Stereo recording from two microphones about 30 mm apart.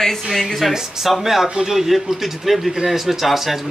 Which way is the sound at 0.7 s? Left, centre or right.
Centre.